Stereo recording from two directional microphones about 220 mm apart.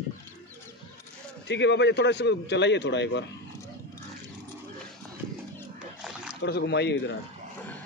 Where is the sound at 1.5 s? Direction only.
50° left (ahead or behind).